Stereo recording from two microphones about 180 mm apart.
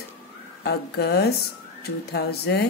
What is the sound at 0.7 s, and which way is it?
Speech, 70° left (ahead or behind).